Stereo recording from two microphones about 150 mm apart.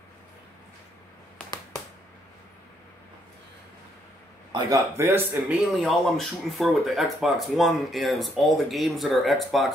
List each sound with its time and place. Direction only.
4.5 s a man's voice: 25° right (ahead or behind)
5.5 s speech: centre (ahead or behind)